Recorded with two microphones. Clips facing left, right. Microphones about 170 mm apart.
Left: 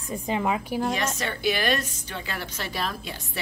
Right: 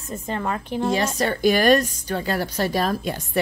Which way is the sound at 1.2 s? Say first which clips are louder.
Right 8 dB; 40° right (ahead or behind).